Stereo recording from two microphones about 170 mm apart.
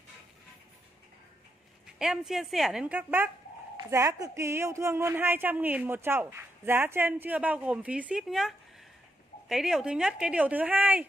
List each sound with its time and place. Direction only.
2.0 s a woman's voice: 5° right (ahead or behind)